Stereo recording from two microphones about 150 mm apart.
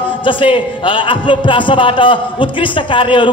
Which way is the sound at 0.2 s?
35° left (ahead or behind).